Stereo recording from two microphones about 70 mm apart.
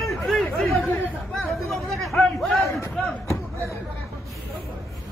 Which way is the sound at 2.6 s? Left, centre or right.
Left.